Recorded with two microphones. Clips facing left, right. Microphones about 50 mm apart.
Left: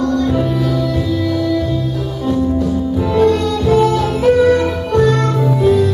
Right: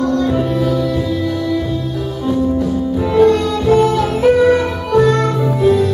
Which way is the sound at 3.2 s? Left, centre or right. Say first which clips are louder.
Right 2 dB; centre.